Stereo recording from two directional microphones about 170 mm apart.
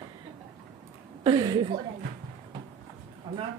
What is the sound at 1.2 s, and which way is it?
Speech, 25° right (ahead or behind).